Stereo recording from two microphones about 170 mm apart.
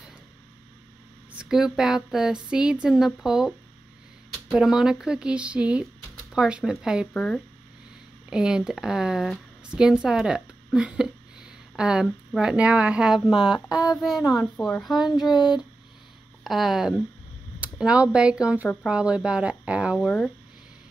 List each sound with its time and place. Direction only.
1.4 s speech: 5° right (ahead or behind)
13.5 s a sound: 20° left (ahead or behind)
14.2 s child singing: 20° left (ahead or behind)
14.6 s speech: centre (ahead or behind)
15.0 s child singing: 25° left (ahead or behind)
16.4 s speech: centre (ahead or behind)